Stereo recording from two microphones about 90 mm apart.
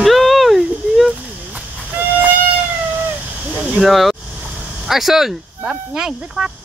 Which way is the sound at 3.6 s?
Centre (ahead or behind).